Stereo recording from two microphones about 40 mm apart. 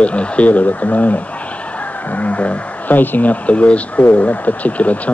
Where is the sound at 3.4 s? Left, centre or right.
Left.